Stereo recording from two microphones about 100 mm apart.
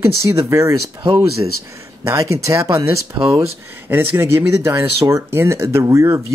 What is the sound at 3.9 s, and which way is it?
Speech, 20° right (ahead or behind).